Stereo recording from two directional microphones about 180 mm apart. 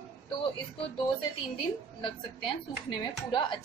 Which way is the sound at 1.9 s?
25° left (ahead or behind).